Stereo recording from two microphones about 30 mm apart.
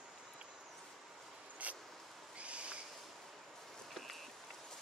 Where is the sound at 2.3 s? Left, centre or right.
Right.